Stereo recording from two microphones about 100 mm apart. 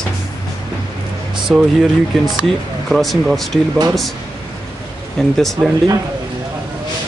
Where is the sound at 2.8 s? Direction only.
Centre (ahead or behind).